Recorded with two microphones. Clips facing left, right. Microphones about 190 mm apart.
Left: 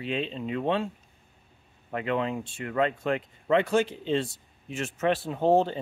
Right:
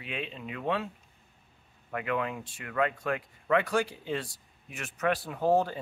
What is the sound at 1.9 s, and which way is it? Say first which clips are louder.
Speech: left 3 dB; 25° left (ahead or behind).